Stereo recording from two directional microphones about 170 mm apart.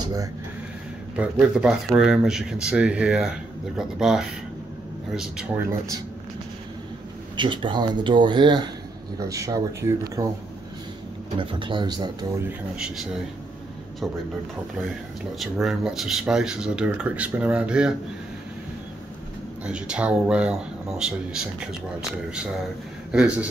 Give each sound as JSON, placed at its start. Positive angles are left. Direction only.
{"t": 1.1, "sound": "speech", "side_deg": -5}
{"t": 7.3, "sound": "speech", "side_deg": -30}
{"t": 11.3, "sound": "speech", "side_deg": -30}
{"t": 12.4, "sound": "speech", "side_deg": -5}
{"t": 15.3, "sound": "speech", "side_deg": 0}
{"t": 19.6, "sound": "speech", "side_deg": -5}
{"t": 23.1, "sound": "speech", "side_deg": -5}